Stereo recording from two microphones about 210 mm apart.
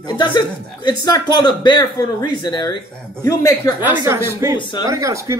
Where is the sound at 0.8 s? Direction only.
20° left (ahead or behind).